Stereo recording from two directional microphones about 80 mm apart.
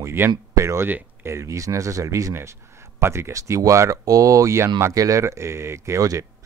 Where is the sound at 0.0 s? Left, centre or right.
Right.